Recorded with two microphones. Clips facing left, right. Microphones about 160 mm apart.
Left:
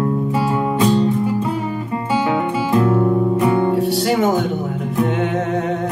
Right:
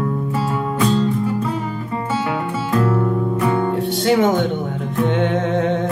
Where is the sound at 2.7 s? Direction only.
20° left (ahead or behind).